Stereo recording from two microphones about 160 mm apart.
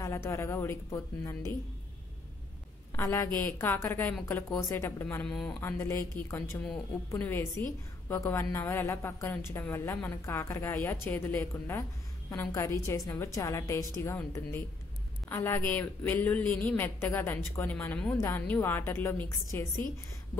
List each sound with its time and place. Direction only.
0.0 s a woman's voice: 20° left (ahead or behind)
2.9 s a woman's voice: 15° left (ahead or behind)
5.2 s speech: 5° left (ahead or behind)
5.6 s a woman's voice: 15° left (ahead or behind)